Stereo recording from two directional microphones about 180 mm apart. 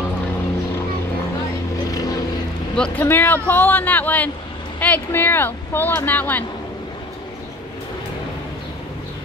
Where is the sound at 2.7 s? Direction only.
5° left (ahead or behind).